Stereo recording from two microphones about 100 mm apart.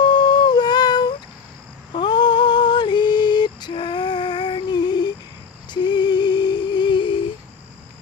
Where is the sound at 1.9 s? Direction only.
50° left (ahead or behind).